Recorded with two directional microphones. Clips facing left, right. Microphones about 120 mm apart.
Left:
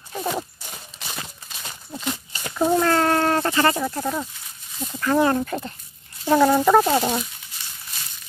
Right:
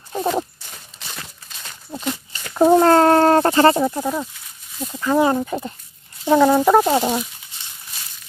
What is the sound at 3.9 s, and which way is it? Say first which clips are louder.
Speech: right 3 dB; 5° right (ahead or behind).